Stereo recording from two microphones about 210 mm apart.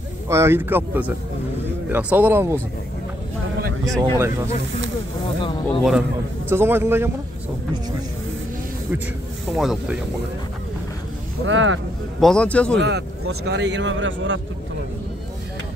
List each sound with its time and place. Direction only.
0.3 s speech: 10° right (ahead or behind)
5.7 s a man's voice: centre (ahead or behind)
6.5 s speech: 10° right (ahead or behind)
9.5 s a man's voice: centre (ahead or behind)
11.4 s a man's voice: 65° right (ahead or behind)
12.2 s a man's voice: 5° left (ahead or behind)
12.7 s a man's voice: 55° right (ahead or behind)